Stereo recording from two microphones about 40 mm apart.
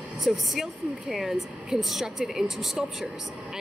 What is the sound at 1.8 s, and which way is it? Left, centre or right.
Speech, centre.